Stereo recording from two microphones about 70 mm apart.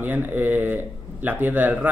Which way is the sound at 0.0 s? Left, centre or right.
Right.